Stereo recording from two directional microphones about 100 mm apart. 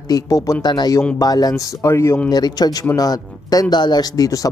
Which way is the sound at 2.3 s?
40° left (ahead or behind).